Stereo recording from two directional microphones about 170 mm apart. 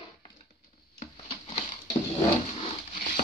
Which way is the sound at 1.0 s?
40° left (ahead or behind).